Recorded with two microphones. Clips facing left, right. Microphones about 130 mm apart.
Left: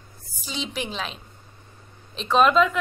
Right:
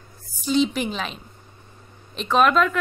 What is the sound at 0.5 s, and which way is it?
A woman's voice, centre (ahead or behind).